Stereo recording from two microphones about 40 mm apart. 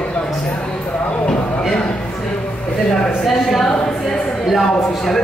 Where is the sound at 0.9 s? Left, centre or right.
Left.